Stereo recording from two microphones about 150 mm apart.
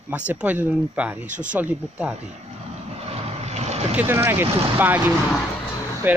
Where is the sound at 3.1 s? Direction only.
45° right (ahead or behind).